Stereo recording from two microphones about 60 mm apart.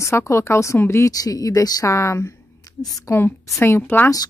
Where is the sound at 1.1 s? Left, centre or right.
Left.